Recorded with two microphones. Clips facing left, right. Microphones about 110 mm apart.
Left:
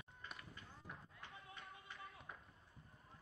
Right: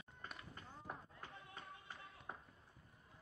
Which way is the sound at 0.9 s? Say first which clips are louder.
Right 6 dB; 40° right (ahead or behind).